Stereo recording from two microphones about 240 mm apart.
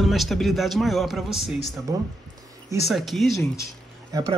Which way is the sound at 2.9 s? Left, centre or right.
Centre.